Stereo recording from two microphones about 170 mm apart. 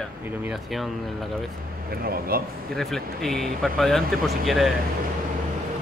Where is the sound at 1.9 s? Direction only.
60° right (ahead or behind).